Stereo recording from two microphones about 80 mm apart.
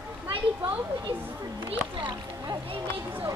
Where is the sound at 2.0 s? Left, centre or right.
Right.